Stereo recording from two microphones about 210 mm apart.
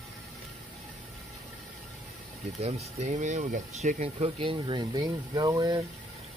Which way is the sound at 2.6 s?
30° right (ahead or behind).